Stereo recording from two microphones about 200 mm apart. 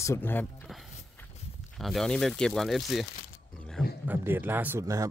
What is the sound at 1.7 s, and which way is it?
Speech, centre (ahead or behind).